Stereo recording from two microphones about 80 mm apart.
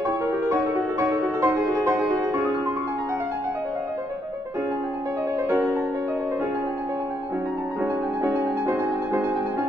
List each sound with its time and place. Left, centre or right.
0.9 s music: right
7.8 s music: right